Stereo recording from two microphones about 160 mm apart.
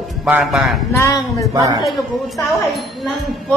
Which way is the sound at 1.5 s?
20° right (ahead or behind).